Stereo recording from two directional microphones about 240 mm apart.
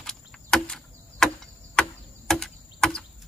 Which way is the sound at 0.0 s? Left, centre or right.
Centre.